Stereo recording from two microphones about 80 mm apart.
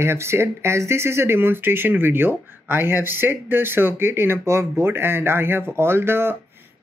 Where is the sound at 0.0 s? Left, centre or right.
Right.